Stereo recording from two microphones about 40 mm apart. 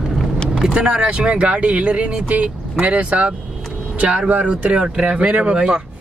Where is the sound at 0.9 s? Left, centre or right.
Right.